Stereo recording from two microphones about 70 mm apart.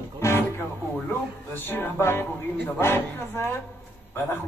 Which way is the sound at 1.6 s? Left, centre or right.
Left.